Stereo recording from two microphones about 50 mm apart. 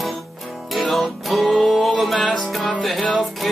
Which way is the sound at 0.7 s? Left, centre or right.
Centre.